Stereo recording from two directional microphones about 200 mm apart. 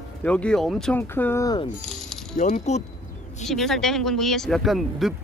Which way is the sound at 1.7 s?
Centre (ahead or behind).